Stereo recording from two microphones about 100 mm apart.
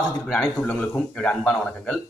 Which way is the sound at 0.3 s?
15° left (ahead or behind).